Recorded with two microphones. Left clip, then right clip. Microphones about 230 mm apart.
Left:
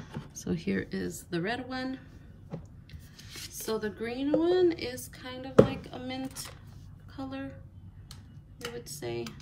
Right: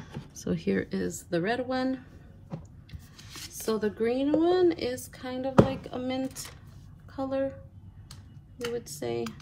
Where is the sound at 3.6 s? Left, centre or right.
Centre.